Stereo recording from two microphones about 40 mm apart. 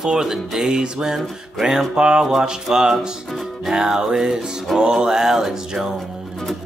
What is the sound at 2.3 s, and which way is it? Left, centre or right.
Music, centre.